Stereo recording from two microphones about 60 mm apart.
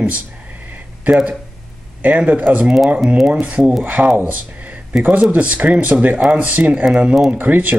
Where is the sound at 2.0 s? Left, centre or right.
Right.